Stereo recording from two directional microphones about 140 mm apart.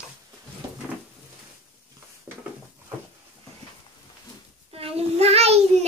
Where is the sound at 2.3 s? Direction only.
15° right (ahead or behind).